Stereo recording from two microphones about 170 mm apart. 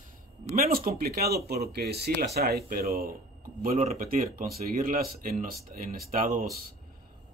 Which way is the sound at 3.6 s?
45° right (ahead or behind).